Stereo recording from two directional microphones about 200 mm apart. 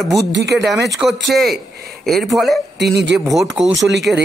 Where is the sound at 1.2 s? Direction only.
Centre (ahead or behind).